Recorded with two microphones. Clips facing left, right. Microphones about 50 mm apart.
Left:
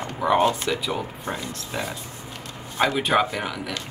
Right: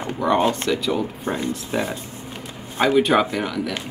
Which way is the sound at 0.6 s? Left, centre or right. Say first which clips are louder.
Right 4 dB; centre.